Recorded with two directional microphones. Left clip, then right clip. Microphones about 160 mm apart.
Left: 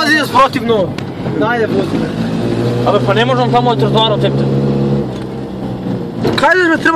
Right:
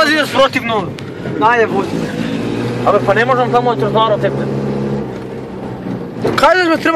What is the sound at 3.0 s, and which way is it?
Speech, 25° left (ahead or behind).